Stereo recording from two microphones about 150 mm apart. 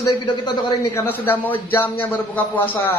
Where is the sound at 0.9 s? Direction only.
15° left (ahead or behind).